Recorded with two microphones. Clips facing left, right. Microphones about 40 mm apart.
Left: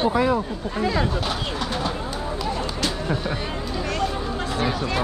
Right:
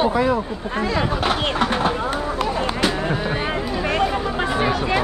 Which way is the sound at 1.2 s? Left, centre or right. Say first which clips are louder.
Right 7 dB; right.